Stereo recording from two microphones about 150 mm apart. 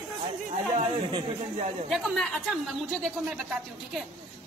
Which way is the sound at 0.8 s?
40° right (ahead or behind).